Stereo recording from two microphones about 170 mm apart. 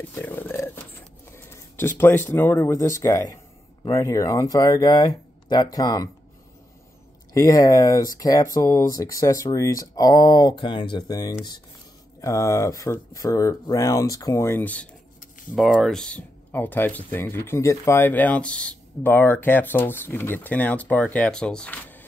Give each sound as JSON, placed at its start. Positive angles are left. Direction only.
{"t": 0.0, "sound": "a sound", "side_deg": 10}
{"t": 1.3, "sound": "speech", "side_deg": 15}
{"t": 7.3, "sound": "speech", "side_deg": 20}